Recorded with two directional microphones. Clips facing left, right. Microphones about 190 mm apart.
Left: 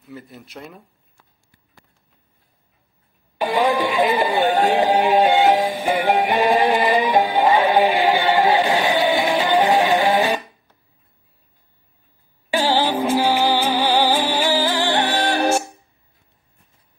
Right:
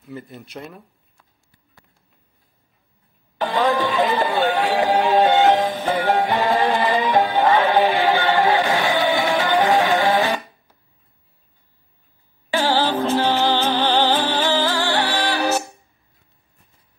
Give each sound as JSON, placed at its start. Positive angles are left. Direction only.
{"t": 0.1, "sound": "speech", "side_deg": 0}
{"t": 3.3, "sound": "music", "side_deg": 10}
{"t": 12.4, "sound": "music", "side_deg": 15}